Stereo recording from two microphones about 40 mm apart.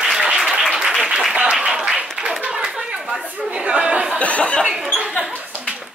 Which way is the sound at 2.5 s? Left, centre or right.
Centre.